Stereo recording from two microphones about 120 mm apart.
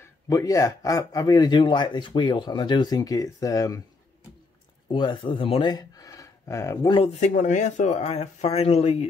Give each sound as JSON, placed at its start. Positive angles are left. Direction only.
{"t": 0.0, "sound": "speech", "side_deg": 30}
{"t": 4.8, "sound": "speech", "side_deg": 40}
{"t": 6.9, "sound": "speech", "side_deg": 50}
{"t": 7.2, "sound": "speech", "side_deg": 85}